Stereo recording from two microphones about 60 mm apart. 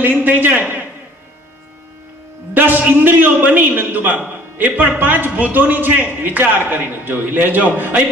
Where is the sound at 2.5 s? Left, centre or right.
Right.